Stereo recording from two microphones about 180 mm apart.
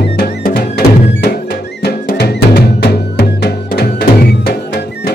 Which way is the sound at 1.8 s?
65° left (ahead or behind).